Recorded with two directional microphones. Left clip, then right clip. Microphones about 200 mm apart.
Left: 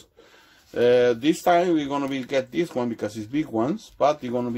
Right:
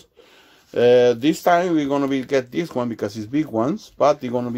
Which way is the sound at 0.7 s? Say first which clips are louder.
Right 4 dB; 35° right (ahead or behind).